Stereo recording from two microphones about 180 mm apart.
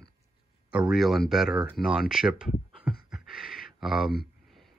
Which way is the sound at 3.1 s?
Centre (ahead or behind).